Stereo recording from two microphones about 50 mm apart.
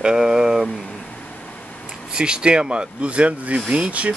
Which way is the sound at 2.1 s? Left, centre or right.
Centre.